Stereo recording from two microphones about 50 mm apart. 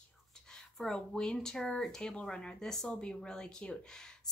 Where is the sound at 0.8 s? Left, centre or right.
Centre.